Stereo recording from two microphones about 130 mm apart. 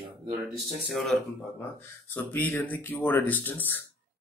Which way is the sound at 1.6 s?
15° left (ahead or behind).